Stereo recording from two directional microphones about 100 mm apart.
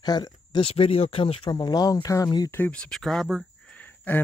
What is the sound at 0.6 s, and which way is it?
Speech, 75° left (ahead or behind).